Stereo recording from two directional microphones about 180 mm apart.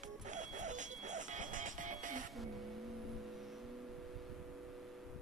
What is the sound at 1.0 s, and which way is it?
Music, 45° right (ahead or behind).